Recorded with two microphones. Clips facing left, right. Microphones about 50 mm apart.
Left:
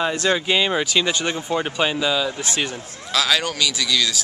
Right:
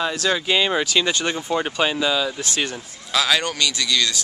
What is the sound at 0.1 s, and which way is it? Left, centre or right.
Speech, left.